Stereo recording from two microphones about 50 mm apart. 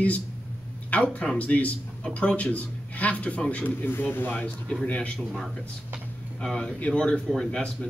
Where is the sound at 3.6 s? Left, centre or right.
Left.